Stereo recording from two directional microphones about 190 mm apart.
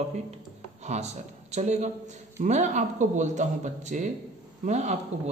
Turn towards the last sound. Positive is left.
turn(degrees=-40)  # may be behind; listen again after turning